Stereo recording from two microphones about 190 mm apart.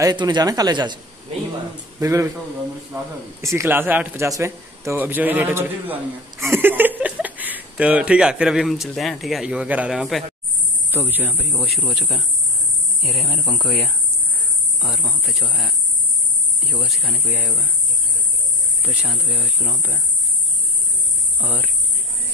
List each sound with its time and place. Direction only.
0.0 s speech: 25° right (ahead or behind)
2.0 s speech: 15° right (ahead or behind); by 15.6 s centre (ahead or behind)
16.6 s speech: centre (ahead or behind)
18.9 s speech: 5° right (ahead or behind)